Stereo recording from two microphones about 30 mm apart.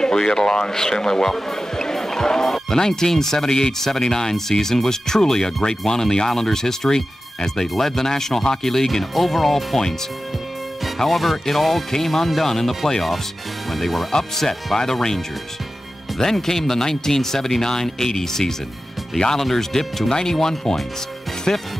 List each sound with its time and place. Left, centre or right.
0.0 s speech: left; by 9.8 s centre
11.0 s speech: centre
16.2 s speech: centre